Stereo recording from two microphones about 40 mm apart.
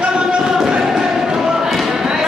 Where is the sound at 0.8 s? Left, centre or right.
Centre.